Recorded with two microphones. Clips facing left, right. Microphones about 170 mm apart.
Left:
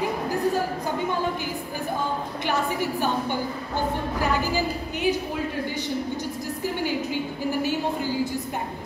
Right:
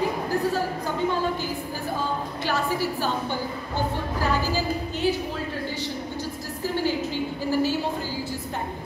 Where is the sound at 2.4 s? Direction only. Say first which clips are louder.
Even; 20° left (ahead or behind).